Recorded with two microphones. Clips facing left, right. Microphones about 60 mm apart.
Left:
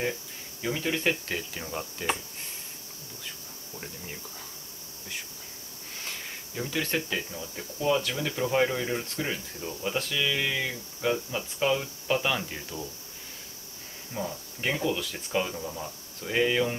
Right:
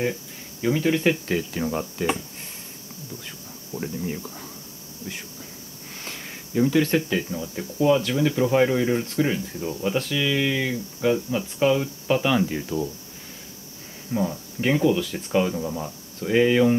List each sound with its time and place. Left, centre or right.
0.0 s speech: centre
1.5 s cricket: right
3.7 s cricket: centre
6.0 s cricket: centre
7.0 s speech: centre
14.1 s speech: centre